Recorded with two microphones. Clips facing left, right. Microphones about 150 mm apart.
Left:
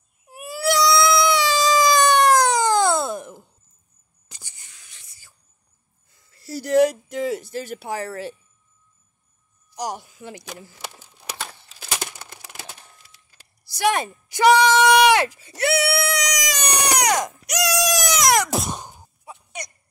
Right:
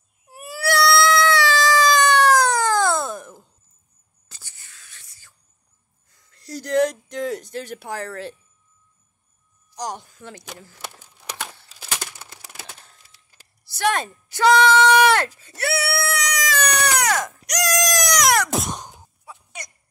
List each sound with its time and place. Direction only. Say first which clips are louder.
0.3 s cat: left 1 dB; 15° left (ahead or behind)
4.3 s whispering: left 1 dB; 15° left (ahead or behind)
6.3 s speech: left 3 dB; 5° left (ahead or behind)
9.8 s speech: left 1 dB; 10° left (ahead or behind)
11.0 s a sound: right 1 dB; 10° left (ahead or behind)
13.7 s a sound: left 1 dB; 10° left (ahead or behind)
17.5 s goat: even; 5° left (ahead or behind)
18.6 s sigh: right 1 dB; 10° left (ahead or behind)
19.2 s throat clearing: left 4 dB; 20° left (ahead or behind)